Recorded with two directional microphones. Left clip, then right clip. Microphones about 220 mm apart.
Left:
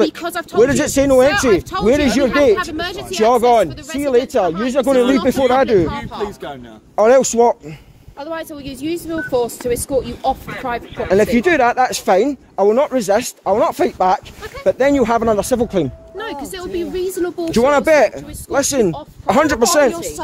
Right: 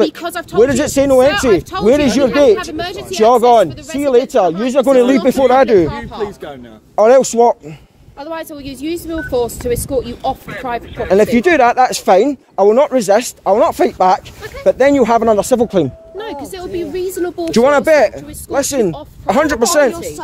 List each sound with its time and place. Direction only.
0.2 s speech: 35° right (ahead or behind)
0.6 s speech: 10° right (ahead or behind)
1.6 s speech: 30° right (ahead or behind)
2.0 s speech: 20° right (ahead or behind)
7.0 s speech: 10° right (ahead or behind)
8.2 s speech: 40° right (ahead or behind)
11.3 s speech: 25° right (ahead or behind)
16.2 s speech: 5° right (ahead or behind)
16.7 s speech: 20° right (ahead or behind)
17.6 s speech: 10° right (ahead or behind)